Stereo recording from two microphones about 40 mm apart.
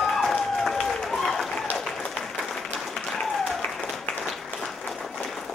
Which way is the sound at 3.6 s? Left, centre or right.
Left.